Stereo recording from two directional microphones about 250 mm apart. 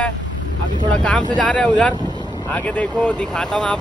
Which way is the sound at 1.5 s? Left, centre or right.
Centre.